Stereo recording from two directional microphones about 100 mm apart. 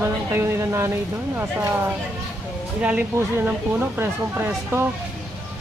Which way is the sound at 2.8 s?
15° right (ahead or behind).